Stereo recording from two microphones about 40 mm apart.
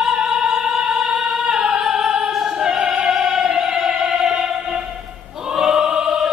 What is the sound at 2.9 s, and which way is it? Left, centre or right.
Opera, right.